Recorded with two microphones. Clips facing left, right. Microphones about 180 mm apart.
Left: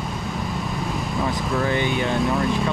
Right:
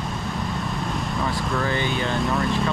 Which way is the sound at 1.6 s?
20° left (ahead or behind).